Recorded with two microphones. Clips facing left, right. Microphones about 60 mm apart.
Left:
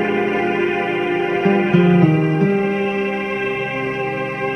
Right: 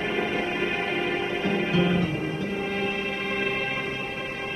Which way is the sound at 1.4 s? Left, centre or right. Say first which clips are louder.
Left 10 dB; left.